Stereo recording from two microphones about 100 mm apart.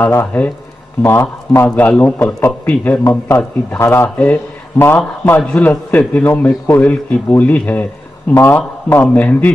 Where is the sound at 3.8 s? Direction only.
25° left (ahead or behind).